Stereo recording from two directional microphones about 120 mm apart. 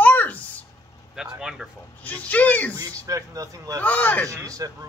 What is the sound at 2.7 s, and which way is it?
Speech, 25° right (ahead or behind).